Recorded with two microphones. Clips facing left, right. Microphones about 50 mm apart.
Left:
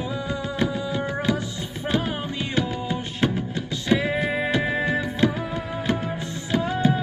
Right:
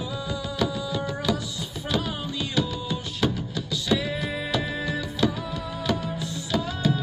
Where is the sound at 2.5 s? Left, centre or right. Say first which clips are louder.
Left 2 dB; left.